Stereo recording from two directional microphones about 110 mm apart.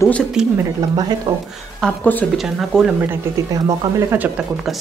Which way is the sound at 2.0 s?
15° left (ahead or behind).